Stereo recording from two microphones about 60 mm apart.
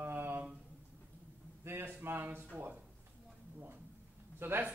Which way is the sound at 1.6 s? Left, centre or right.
Right.